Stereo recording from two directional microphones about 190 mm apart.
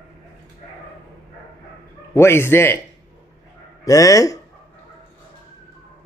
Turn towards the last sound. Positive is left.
turn(degrees=15)  # may be behind; listen again after turning